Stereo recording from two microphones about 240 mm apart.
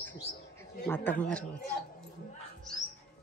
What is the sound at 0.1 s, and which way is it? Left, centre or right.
Bird, left.